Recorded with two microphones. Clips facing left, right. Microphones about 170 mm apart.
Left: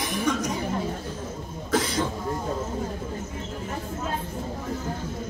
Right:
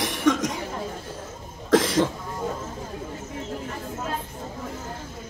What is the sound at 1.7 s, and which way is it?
Cough, 90° right.